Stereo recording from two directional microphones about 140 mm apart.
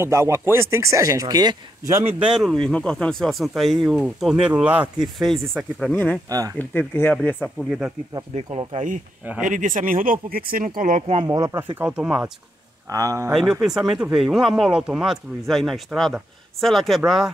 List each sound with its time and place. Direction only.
0.0 s speech: 20° right (ahead or behind)
2.1 s speech: centre (ahead or behind)
6.3 s speech: 25° right (ahead or behind)
6.7 s speech: 15° left (ahead or behind)
8.7 s speech: 70° right (ahead or behind)
10.3 s speech: 90° right
10.8 s speech: 60° right (ahead or behind)
11.2 s speech: 25° right (ahead or behind)
11.8 s speech: 10° right (ahead or behind)
12.9 s speech: 25° right (ahead or behind)
13.3 s speech: centre (ahead or behind)